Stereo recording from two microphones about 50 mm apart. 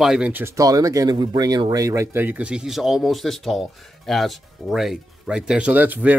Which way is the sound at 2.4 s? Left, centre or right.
Right.